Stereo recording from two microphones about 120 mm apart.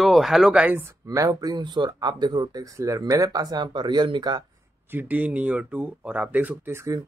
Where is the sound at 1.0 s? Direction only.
30° right (ahead or behind).